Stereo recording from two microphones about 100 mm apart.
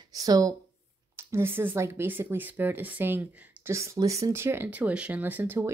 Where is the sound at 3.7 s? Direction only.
30° right (ahead or behind).